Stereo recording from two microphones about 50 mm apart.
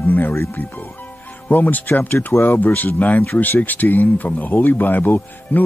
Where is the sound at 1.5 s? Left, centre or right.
Left.